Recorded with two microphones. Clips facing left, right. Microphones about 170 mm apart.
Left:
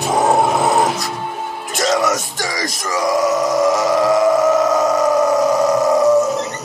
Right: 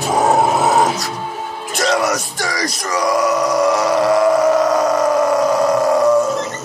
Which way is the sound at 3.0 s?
45° left (ahead or behind).